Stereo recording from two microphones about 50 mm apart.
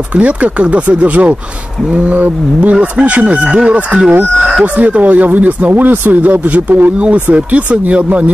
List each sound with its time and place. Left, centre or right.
0.1 s speech: right
7.2 s speech: right